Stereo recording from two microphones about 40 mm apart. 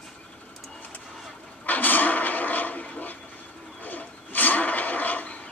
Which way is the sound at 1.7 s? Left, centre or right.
Left.